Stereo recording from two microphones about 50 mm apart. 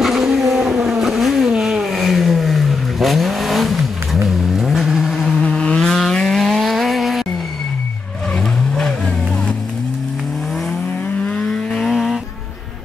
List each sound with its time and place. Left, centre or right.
0.0 s vehicle: centre
5.4 s vehicle: left
5.9 s vehicle: centre
11.2 s a sound: centre
11.8 s vehicle: centre